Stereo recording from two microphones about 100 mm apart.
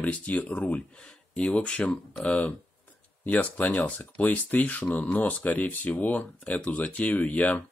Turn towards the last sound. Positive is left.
turn(degrees=15)  # may be behind; listen again after turning